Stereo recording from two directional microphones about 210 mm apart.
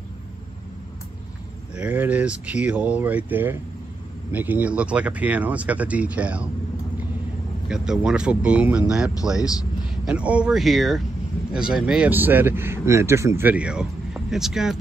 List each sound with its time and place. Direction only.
1.8 s speech: 5° right (ahead or behind)
7.6 s speech: 5° right (ahead or behind)
9.4 s speech: 15° left (ahead or behind)
10.0 s speech: 5° right (ahead or behind)